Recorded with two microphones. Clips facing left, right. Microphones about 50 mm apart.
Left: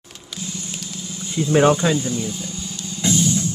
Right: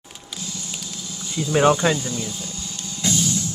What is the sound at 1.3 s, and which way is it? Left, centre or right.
Speech, left.